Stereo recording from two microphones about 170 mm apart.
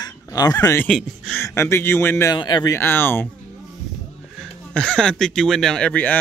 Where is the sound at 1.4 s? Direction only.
15° left (ahead or behind).